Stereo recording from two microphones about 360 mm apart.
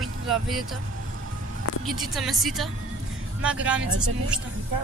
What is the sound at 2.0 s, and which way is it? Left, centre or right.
Speech, centre.